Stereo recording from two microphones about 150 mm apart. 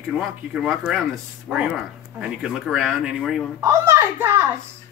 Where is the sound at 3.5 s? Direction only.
20° right (ahead or behind).